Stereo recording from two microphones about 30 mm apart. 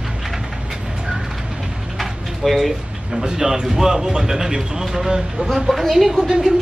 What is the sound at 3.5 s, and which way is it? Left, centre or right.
Speech, centre.